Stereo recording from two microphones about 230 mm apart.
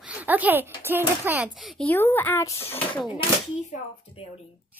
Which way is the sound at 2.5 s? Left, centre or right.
Left.